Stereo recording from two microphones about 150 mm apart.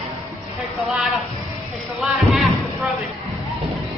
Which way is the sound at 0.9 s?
Centre (ahead or behind).